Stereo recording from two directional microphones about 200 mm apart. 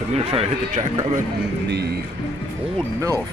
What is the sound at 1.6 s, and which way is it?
Speech, 55° right (ahead or behind).